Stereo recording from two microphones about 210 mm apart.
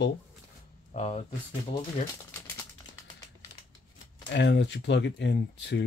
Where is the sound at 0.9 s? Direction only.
30° left (ahead or behind).